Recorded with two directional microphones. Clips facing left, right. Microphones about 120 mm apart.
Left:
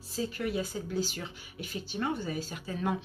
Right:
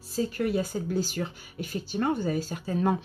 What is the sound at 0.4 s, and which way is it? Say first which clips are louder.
Speech: right 6 dB; 45° right (ahead or behind).